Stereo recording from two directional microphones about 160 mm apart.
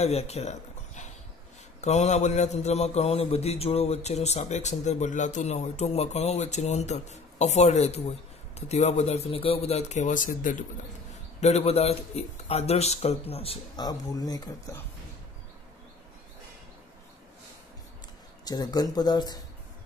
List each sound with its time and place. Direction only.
0.0 s a man's voice: 40° left (ahead or behind)
11.4 s a man's voice: 40° left (ahead or behind)
13.8 s speech: 25° left (ahead or behind)
18.4 s speech: 25° left (ahead or behind)